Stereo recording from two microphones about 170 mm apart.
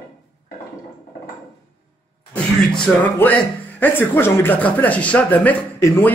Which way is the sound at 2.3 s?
5° left (ahead or behind).